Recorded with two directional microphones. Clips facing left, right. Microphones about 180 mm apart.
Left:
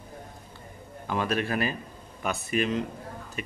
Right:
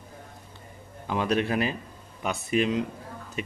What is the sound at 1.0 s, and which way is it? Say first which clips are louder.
A man's voice: right 2 dB; 15° right (ahead or behind).